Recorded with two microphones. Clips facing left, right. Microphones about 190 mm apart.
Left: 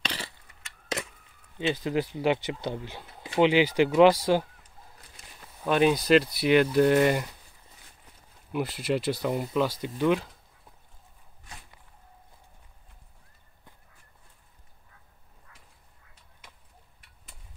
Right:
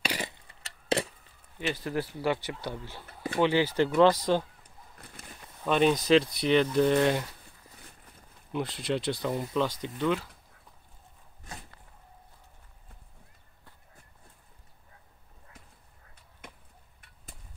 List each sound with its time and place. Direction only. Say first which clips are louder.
0.0 s a sound: right 3 dB; 15° right (ahead or behind)
0.5 s typewriter: right 7 dB; 35° right (ahead or behind)
1.7 s speech: left 4 dB; 20° left (ahead or behind)
5.6 s speech: left 1 dB; 5° left (ahead or behind)
8.5 s speech: left 3 dB; 5° left (ahead or behind)